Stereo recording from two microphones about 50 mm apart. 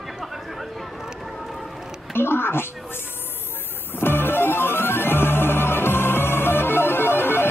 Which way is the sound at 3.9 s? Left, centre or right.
Left.